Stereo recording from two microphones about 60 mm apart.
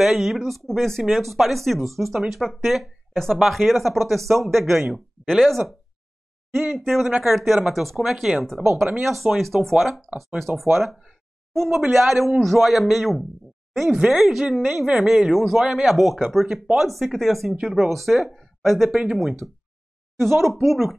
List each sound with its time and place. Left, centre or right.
0.0 s speech: centre
5.3 s speech: centre
7.1 s speech: centre
7.3 s speech: centre